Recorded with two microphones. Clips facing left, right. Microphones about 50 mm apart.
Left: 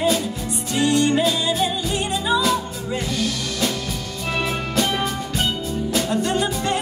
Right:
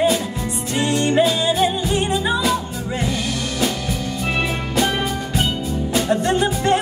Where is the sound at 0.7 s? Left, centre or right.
Right.